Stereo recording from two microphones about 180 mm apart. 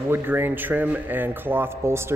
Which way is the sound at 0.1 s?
10° right (ahead or behind).